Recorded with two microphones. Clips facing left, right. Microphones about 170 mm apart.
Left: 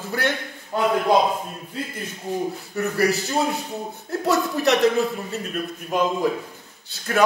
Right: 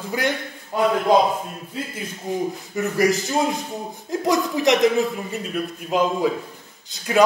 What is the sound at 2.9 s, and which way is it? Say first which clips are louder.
A man's voice: right 2 dB; 15° right (ahead or behind).